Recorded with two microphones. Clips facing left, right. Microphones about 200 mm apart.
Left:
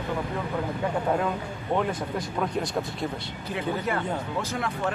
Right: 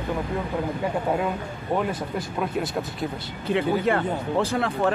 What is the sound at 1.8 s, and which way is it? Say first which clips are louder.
Speech: even; 5° right (ahead or behind).